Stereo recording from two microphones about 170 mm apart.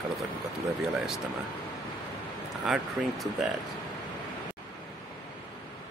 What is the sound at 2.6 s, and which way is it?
Speech, centre (ahead or behind).